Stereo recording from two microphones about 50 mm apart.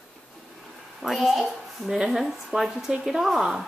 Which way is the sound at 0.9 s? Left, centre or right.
Centre.